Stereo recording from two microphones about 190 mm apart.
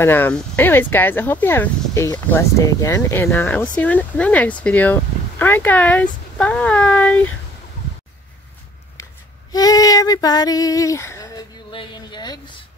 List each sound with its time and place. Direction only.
0.0 s speech: 10° left (ahead or behind)
9.5 s female singing: 20° left (ahead or behind)